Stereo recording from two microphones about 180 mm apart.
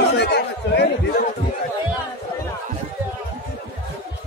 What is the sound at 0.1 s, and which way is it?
Chatter, 70° left (ahead or behind).